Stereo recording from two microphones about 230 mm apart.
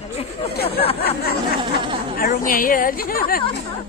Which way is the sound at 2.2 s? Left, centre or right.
Left.